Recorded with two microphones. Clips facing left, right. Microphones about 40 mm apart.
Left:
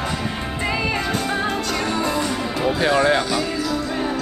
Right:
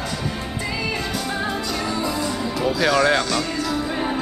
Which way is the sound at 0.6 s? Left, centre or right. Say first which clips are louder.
Left 4 dB; left.